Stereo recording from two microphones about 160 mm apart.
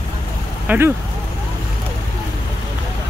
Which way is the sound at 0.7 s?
15° right (ahead or behind).